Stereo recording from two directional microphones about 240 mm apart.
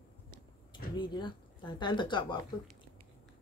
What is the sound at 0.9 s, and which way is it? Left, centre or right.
Speech, centre.